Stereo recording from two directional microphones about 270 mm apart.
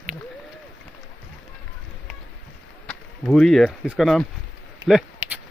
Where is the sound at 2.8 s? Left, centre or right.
Centre.